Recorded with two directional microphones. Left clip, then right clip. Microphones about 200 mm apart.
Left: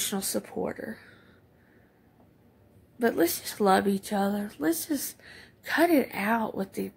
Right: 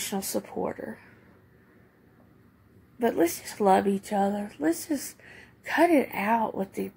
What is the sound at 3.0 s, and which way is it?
A woman's voice, 10° left (ahead or behind).